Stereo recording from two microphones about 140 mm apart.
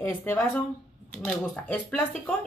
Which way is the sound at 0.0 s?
15° left (ahead or behind).